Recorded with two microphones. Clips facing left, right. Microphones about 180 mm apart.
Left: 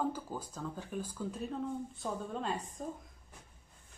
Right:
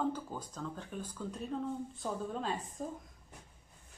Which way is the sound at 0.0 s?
5° left (ahead or behind).